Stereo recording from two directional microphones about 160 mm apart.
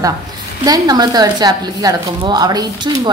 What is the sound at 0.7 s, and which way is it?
A woman's voice, 25° right (ahead or behind).